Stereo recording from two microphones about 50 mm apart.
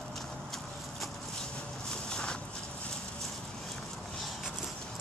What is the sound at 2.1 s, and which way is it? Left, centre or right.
Walk, centre.